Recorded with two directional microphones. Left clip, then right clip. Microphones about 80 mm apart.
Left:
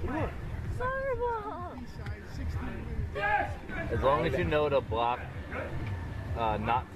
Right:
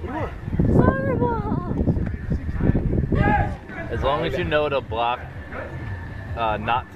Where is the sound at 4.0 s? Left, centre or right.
Right.